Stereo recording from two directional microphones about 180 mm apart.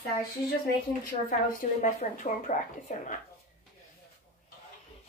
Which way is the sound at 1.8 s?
45° left (ahead or behind).